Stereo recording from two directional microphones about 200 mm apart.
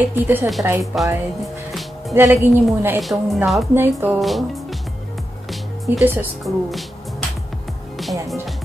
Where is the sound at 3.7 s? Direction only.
10° right (ahead or behind).